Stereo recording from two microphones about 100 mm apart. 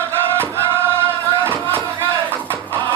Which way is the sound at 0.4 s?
25° right (ahead or behind).